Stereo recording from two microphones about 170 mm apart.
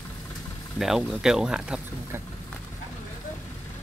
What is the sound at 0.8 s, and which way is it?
Speech, centre (ahead or behind).